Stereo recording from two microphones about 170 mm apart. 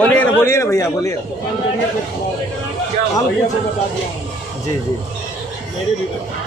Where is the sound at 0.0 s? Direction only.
10° left (ahead or behind).